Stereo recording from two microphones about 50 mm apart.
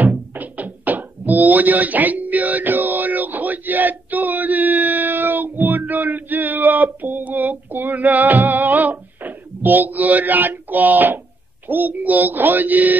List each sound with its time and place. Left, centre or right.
0.0 s music: right
11.6 s speech: right